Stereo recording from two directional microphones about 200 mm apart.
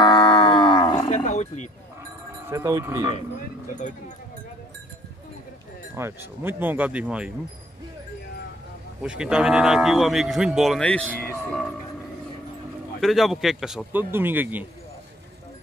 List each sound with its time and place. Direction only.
0.0 s a sound: 25° left (ahead or behind)
1.1 s roaring cats: 35° left (ahead or behind)
2.4 s speech: 15° right (ahead or behind)
5.9 s speech: 10° right (ahead or behind)
9.0 s speech: 5° right (ahead or behind)
13.0 s speech: centre (ahead or behind)